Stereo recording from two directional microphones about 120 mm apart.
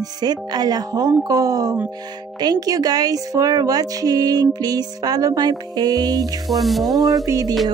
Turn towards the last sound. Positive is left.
turn(degrees=-30)  # may be behind; listen again after turning